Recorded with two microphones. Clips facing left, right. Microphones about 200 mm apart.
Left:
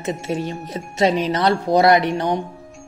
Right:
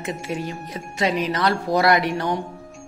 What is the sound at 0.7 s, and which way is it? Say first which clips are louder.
Speech: left 5 dB; 30° left (ahead or behind).